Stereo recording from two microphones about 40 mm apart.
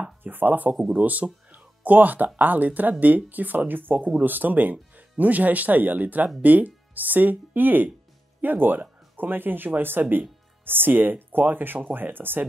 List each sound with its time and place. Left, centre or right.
0.2 s speech: right
0.9 s speech: right
10.6 s music: right
11.0 s speech: right